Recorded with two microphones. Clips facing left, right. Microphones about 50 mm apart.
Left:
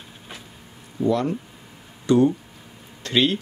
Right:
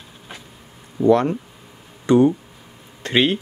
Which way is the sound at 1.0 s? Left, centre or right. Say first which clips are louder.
Right 6 dB; right.